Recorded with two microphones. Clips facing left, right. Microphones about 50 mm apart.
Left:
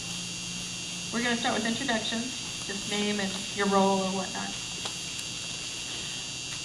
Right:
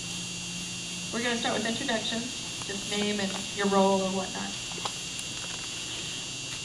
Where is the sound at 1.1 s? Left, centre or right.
Centre.